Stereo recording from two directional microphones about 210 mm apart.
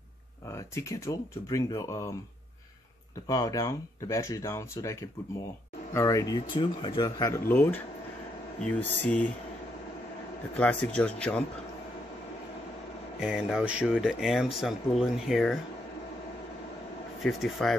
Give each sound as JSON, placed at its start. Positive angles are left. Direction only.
{"t": 0.5, "sound": "speech", "side_deg": 15}
{"t": 3.3, "sound": "speech", "side_deg": 15}
{"t": 5.9, "sound": "speech", "side_deg": 15}
{"t": 10.5, "sound": "speech", "side_deg": 5}
{"t": 13.2, "sound": "speech", "side_deg": -5}
{"t": 17.2, "sound": "speech", "side_deg": 0}